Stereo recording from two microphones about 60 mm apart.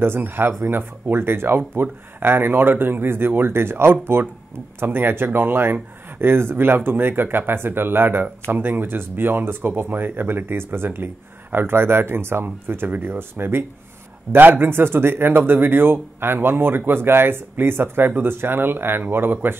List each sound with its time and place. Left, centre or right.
0.0 s speech: right